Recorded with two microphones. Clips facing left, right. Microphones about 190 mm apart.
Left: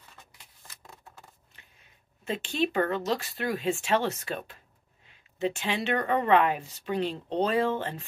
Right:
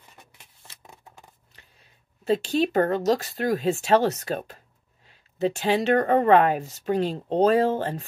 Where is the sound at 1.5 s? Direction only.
35° right (ahead or behind).